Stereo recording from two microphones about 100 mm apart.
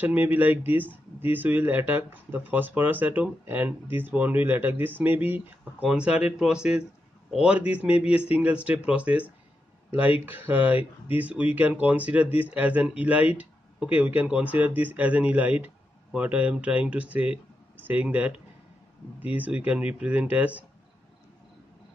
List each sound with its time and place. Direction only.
0.0 s speech: 15° right (ahead or behind)